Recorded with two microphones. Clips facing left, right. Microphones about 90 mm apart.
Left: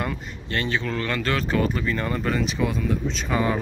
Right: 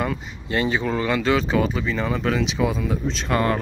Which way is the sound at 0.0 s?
10° right (ahead or behind).